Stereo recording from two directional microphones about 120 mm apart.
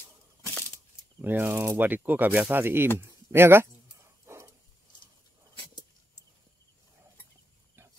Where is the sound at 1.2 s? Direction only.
15° right (ahead or behind).